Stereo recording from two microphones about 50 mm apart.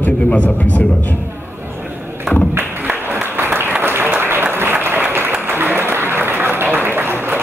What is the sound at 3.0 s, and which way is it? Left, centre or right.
Applause, right.